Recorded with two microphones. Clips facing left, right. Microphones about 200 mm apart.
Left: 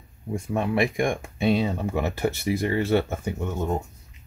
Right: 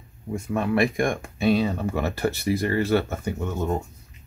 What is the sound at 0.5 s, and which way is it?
Speech, 20° left (ahead or behind).